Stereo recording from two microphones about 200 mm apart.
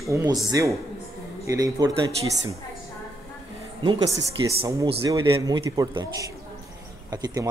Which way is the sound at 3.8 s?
25° right (ahead or behind).